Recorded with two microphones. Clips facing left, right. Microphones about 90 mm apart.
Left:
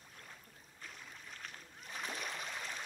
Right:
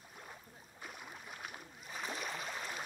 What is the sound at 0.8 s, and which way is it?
Boat, 10° right (ahead or behind).